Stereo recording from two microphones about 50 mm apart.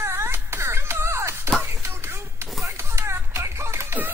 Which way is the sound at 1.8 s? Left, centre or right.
Right.